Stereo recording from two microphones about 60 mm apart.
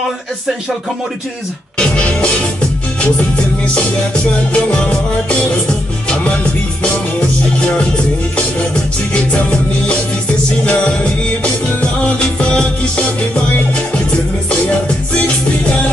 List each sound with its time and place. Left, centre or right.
1.8 s music: centre
3.7 s music: centre
9.1 s music: centre